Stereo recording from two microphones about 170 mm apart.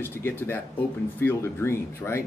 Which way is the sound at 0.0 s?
15° left (ahead or behind).